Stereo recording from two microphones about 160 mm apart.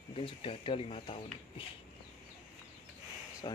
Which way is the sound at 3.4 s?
30° left (ahead or behind).